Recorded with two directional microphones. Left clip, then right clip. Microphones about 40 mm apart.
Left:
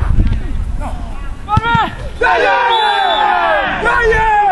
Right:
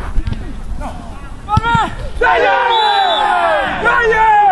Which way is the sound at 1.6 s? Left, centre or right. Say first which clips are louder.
Even; left.